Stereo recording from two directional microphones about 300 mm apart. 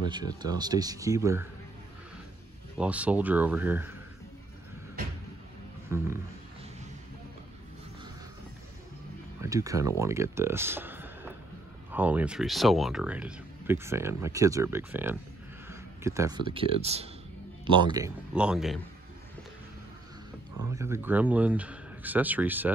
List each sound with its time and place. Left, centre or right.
0.0 s speech: centre
2.8 s speech: centre
5.9 s a sound: centre
9.4 s speech: centre
20.7 s speech: centre